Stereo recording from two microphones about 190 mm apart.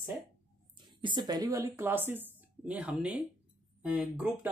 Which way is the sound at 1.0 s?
20° right (ahead or behind).